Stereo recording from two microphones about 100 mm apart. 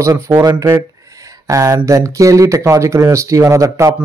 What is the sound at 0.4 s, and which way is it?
Speech, 35° right (ahead or behind).